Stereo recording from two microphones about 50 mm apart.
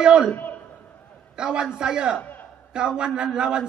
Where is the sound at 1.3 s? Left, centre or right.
Centre.